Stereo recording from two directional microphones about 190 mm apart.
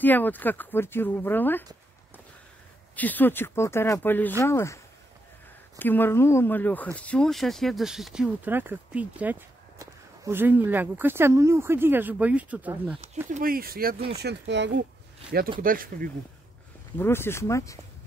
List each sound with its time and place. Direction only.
0.0 s speech: 10° left (ahead or behind)
3.0 s speech: 10° left (ahead or behind)
5.8 s speech: 10° left (ahead or behind); by 13.0 s 10° right (ahead or behind)
13.3 s speech: 50° right (ahead or behind)
14.1 s speech: 65° right (ahead or behind)
15.6 s speech: 50° right (ahead or behind)
17.0 s speech: 10° left (ahead or behind)